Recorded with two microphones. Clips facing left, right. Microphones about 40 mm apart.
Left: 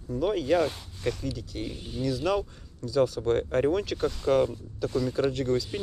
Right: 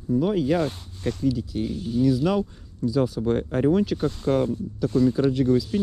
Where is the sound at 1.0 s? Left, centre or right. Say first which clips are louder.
Right 3 dB; left.